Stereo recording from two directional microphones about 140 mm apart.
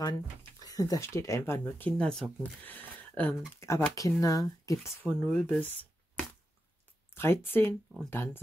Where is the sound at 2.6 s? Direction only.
10° left (ahead or behind).